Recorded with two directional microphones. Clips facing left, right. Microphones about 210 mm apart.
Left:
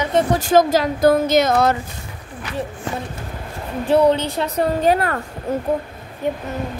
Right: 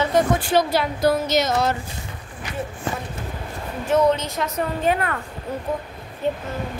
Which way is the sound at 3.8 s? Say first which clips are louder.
Left 4 dB; 35° left (ahead or behind).